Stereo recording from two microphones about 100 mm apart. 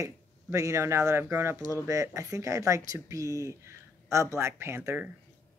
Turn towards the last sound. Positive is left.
turn(degrees=-25)  # may be behind; listen again after turning